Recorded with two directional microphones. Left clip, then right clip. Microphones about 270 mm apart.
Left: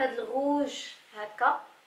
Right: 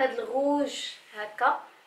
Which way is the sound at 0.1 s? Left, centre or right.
Centre.